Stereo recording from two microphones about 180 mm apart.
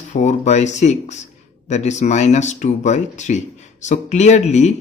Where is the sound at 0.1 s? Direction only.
40° left (ahead or behind).